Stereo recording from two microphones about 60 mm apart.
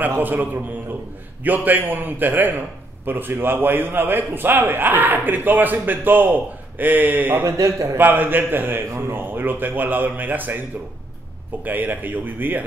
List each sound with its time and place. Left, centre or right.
0.2 s a man's voice: right
7.4 s a man's voice: right
8.0 s a man's voice: right
11.6 s a man's voice: right